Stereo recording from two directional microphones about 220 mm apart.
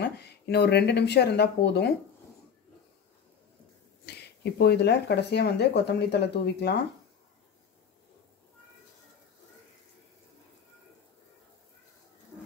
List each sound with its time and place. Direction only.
0.0 s speech: 50° left (ahead or behind)
4.0 s speech: 50° left (ahead or behind)